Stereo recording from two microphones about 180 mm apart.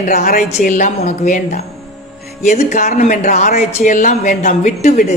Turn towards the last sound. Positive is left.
turn(degrees=50)  # may be behind; listen again after turning